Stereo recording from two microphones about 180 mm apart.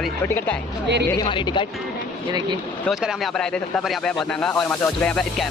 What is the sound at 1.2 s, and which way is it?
Speech, 25° left (ahead or behind).